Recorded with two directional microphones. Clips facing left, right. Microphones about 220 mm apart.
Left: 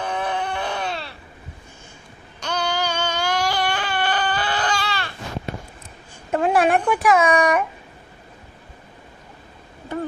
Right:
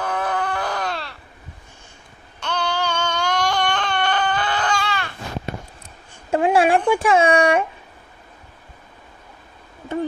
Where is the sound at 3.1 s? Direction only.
10° left (ahead or behind).